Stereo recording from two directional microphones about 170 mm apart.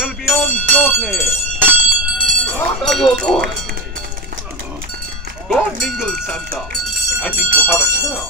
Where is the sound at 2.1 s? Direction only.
50° right (ahead or behind).